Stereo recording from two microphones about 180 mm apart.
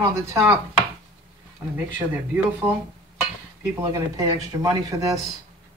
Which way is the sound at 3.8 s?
20° right (ahead or behind).